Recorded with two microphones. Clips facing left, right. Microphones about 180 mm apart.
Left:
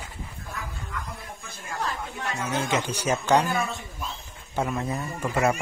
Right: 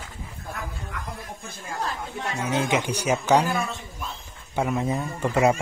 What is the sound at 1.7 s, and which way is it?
Speech, 25° right (ahead or behind).